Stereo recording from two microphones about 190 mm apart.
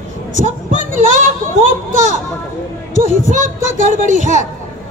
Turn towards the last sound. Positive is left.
turn(degrees=-40)  # may be behind; listen again after turning